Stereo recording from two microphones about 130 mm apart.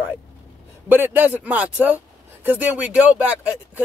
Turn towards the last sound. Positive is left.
turn(degrees=-10)  # may be behind; listen again after turning